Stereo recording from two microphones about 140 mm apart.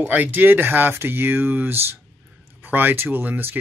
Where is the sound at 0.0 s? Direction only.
10° right (ahead or behind).